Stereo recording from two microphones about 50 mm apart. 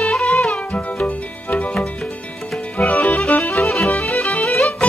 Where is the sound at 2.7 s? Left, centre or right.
Left.